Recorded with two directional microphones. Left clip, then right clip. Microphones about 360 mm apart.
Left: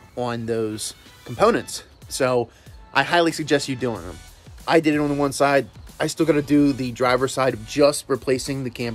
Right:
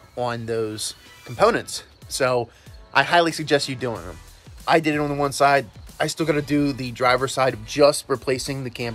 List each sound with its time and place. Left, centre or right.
0.1 s speech: centre